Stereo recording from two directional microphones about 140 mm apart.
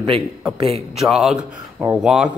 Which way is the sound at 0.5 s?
45° right (ahead or behind).